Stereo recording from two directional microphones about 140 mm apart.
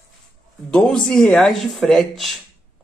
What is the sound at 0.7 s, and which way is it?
Speech, 5° left (ahead or behind).